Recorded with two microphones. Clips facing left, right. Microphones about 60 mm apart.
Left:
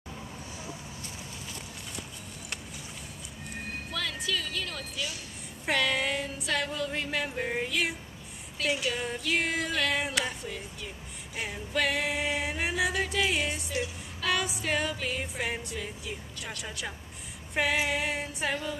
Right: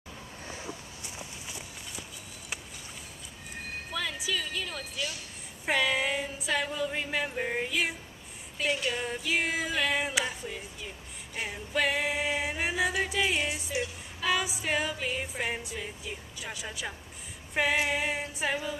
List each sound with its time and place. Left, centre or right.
0.7 s a sound: centre
3.9 s a woman's voice: centre
5.7 s music: centre